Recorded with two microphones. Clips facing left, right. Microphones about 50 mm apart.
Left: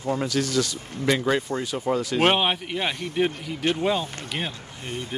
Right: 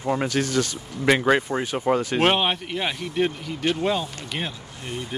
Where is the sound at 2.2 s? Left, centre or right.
Centre.